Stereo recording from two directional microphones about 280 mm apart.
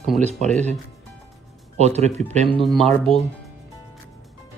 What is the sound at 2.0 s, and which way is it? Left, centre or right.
Speech, right.